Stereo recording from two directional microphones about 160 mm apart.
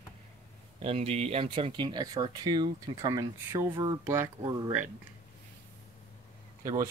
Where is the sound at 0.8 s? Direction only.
35° right (ahead or behind); by 4.3 s 15° right (ahead or behind).